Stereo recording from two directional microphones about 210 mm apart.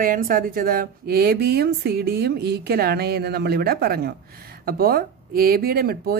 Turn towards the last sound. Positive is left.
turn(degrees=-45)  # may be behind; listen again after turning